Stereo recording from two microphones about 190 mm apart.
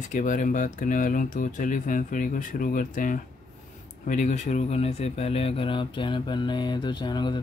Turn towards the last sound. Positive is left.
turn(degrees=25)  # may be behind; listen again after turning